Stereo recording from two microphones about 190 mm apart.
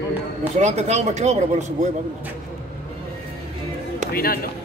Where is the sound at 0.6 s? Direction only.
35° right (ahead or behind).